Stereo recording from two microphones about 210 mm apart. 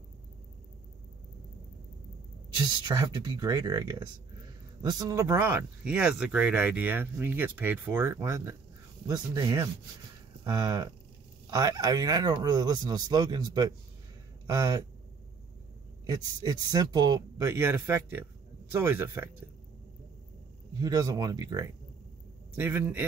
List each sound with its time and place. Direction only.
2.5 s speech: 20° right (ahead or behind)
16.1 s speech: 20° right (ahead or behind)
20.8 s speech: 20° right (ahead or behind)